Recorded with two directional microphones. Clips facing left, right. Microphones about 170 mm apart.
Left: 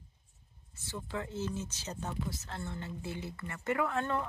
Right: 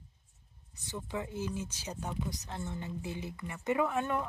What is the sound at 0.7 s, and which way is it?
Speech, 15° right (ahead or behind).